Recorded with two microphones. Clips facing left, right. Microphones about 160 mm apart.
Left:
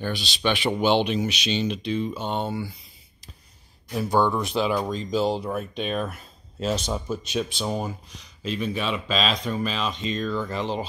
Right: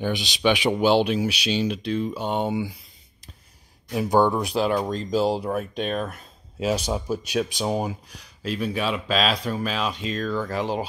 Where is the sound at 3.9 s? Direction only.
15° right (ahead or behind); by 6.6 s centre (ahead or behind).